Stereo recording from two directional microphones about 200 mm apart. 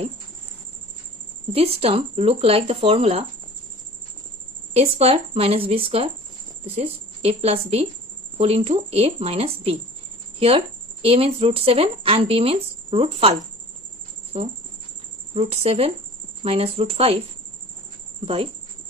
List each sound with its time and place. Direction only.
1.5 s speech: 30° right (ahead or behind)
4.7 s a woman's voice: 30° right (ahead or behind)
18.2 s speech: 30° right (ahead or behind)